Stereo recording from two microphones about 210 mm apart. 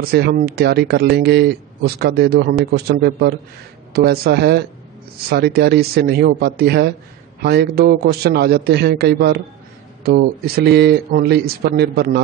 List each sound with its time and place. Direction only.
0.1 s speech: 50° right (ahead or behind)